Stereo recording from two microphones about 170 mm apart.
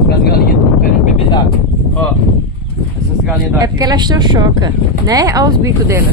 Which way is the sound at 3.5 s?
25° right (ahead or behind).